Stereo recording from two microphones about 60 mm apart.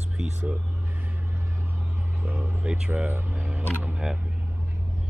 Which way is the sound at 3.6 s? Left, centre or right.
Right.